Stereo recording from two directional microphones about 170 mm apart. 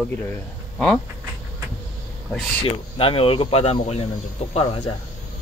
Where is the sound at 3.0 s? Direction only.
30° left (ahead or behind).